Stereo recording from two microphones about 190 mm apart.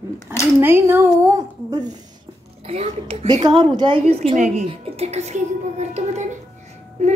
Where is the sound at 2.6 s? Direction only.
30° right (ahead or behind).